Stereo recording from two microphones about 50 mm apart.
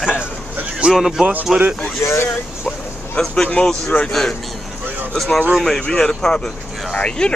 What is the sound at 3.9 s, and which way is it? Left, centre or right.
Speech, left.